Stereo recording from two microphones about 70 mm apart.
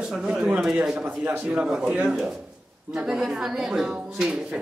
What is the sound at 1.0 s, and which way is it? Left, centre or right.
Speech, right.